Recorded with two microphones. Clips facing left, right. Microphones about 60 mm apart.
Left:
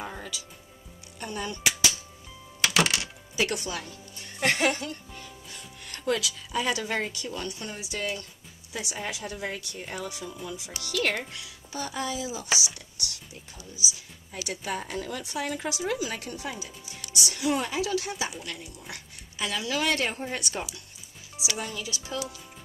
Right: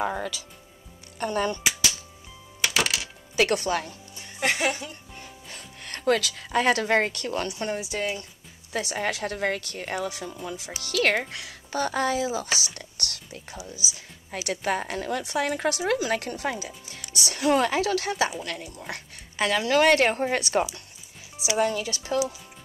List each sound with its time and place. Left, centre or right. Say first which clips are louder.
0.0 s speech: right 9 dB; right
2.6 s music: left 1 dB; centre
3.5 s speech: right 8 dB; right
4.2 s speech: even; centre
5.5 s speech: right 4 dB; right
7.7 s speech: right 6 dB; right
8.7 s speech: right 6 dB; right
10.3 s speech: right 2 dB; right
11.0 s speech: right 5 dB; right